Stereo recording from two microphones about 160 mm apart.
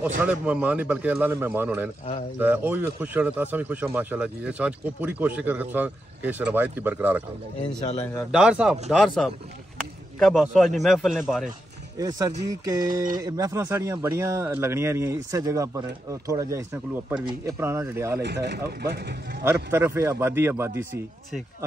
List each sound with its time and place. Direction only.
0.2 s speech: 10° right (ahead or behind)
8.3 s a man's voice: 5° right (ahead or behind)
12.0 s speech: 20° right (ahead or behind)
18.2 s speech: 90° right
19.4 s speech: 15° right (ahead or behind)